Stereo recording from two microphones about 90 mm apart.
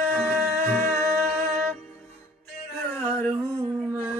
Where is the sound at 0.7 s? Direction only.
25° left (ahead or behind).